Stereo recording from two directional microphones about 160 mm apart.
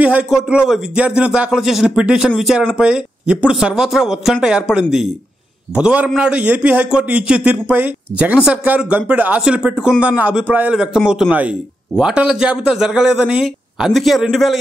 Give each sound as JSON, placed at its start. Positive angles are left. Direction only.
{"t": 0.0, "sound": "a man's voice", "side_deg": -5}